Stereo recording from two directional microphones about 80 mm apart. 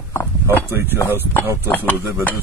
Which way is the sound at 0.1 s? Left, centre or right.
Left.